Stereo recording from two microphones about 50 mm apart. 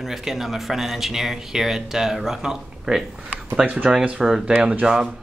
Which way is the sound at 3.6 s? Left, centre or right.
Right.